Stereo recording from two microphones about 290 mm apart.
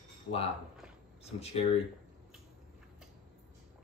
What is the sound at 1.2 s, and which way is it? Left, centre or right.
Speech, left.